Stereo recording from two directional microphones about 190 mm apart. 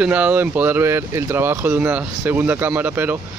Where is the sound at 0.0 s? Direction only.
10° right (ahead or behind).